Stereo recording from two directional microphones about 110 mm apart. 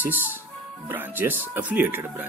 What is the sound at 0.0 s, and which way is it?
Speech, 15° right (ahead or behind).